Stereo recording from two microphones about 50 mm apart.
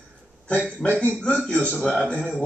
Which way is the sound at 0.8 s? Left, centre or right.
Centre.